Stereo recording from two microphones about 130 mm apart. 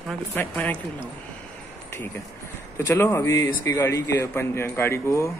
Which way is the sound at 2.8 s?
20° left (ahead or behind).